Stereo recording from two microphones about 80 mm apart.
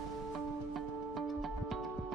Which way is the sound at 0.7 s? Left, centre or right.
Centre.